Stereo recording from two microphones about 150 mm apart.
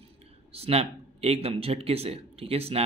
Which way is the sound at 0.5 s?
40° right (ahead or behind).